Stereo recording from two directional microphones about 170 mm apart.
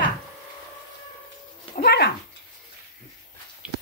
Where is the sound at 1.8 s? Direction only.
75° left (ahead or behind).